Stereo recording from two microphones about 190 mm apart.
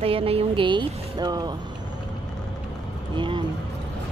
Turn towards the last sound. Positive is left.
turn(degrees=-25)  # may be behind; listen again after turning